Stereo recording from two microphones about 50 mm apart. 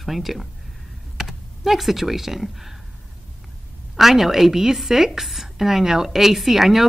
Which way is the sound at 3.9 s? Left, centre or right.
Centre.